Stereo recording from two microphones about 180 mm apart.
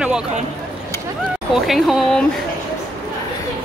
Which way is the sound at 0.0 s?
5° right (ahead or behind).